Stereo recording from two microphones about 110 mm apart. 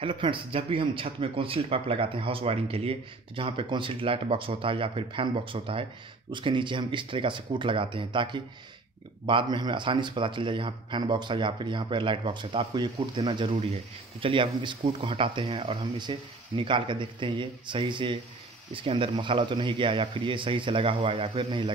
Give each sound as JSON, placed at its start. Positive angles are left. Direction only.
{"t": 0.0, "sound": "speech", "side_deg": -50}
{"t": 16.0, "sound": "speech", "side_deg": -45}